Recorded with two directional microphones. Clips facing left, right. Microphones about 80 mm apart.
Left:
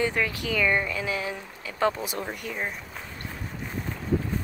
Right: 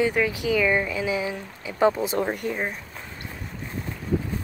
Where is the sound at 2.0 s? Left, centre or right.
Right.